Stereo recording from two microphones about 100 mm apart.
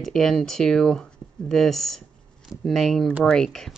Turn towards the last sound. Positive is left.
turn(degrees=5)  # may be behind; listen again after turning